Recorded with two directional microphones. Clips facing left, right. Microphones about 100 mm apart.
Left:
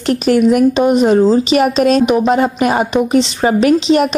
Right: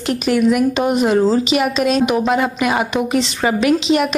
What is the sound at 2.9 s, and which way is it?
Speech, 25° left (ahead or behind).